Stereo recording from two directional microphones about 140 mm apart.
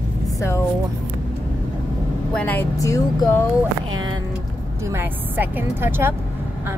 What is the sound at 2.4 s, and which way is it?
Speech, 15° left (ahead or behind).